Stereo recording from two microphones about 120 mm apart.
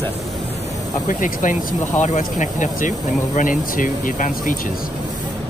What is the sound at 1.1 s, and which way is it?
Speech, 90° left.